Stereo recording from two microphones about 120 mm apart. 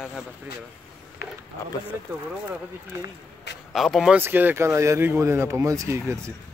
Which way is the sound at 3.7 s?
Centre (ahead or behind).